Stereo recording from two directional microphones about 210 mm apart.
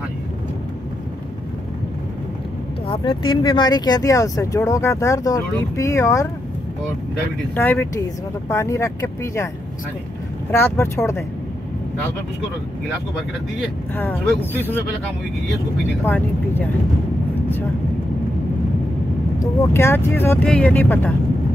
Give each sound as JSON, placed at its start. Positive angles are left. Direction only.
{"t": 2.9, "sound": "speech", "side_deg": 20}
{"t": 7.5, "sound": "speech", "side_deg": 10}
{"t": 10.6, "sound": "speech", "side_deg": 10}
{"t": 13.9, "sound": "speech", "side_deg": 10}
{"t": 19.4, "sound": "speech", "side_deg": 10}